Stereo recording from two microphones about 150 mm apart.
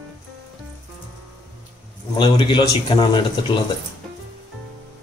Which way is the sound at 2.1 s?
30° left (ahead or behind).